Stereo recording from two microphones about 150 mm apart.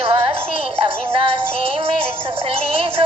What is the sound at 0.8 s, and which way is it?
Music, 35° right (ahead or behind).